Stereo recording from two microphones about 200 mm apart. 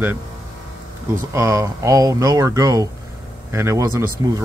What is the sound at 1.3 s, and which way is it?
Speech, 15° right (ahead or behind).